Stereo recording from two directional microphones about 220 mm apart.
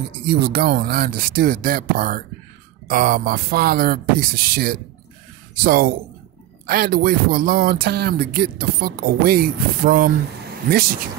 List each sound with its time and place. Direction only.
0.3 s speech: 45° right (ahead or behind)